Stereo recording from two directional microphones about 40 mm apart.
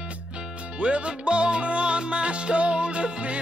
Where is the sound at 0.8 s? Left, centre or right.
Right.